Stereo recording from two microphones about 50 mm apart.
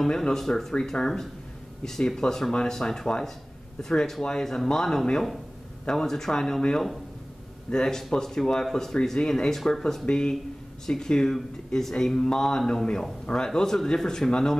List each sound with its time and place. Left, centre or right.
0.0 s a man's voice: centre